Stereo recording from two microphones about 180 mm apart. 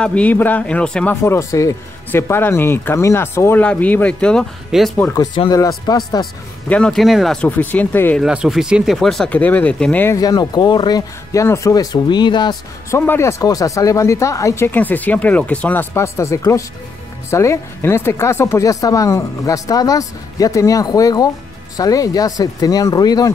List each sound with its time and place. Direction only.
0.0 s speech: 5° left (ahead or behind)
5.1 s speech: 25° left (ahead or behind)
6.7 s speech: 5° left (ahead or behind)
8.2 s speech: 5° right (ahead or behind); by 13.0 s 25° left (ahead or behind)
13.0 s speech: 15° left (ahead or behind)